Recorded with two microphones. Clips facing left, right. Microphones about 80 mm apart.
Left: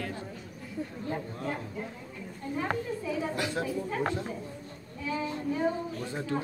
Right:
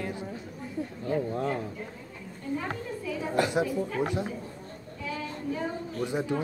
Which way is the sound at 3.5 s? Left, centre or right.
Centre.